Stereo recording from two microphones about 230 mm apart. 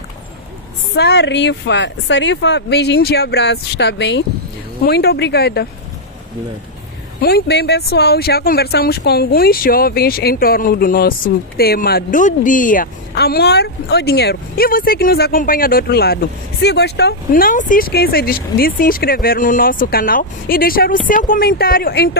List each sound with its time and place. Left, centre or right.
0.9 s speech: left
7.2 s speech: left